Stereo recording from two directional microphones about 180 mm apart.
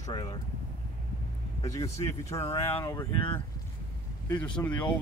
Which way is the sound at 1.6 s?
20° left (ahead or behind).